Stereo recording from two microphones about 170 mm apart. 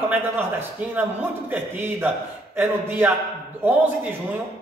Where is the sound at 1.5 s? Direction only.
10° right (ahead or behind).